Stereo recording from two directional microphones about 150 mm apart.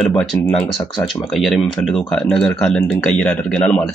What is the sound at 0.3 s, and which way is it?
Speech, 15° left (ahead or behind).